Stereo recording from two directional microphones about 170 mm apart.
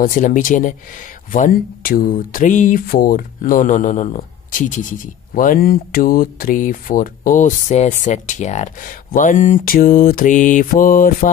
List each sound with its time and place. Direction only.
0.0 s speech: 50° left (ahead or behind)